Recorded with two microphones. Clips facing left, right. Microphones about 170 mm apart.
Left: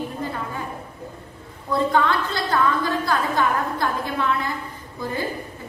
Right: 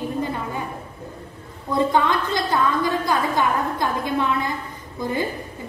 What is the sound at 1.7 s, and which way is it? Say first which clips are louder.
A woman's voice: right 1 dB; 15° right (ahead or behind).